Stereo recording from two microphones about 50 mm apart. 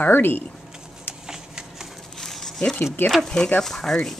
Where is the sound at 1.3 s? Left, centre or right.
Centre.